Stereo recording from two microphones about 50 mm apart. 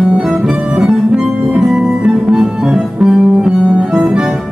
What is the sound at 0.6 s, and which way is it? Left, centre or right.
Music, centre.